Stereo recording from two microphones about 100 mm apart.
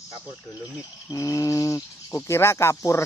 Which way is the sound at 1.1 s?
35° left (ahead or behind).